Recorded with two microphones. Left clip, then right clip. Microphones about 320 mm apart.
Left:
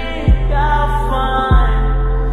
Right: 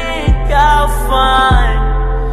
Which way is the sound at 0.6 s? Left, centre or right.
Right.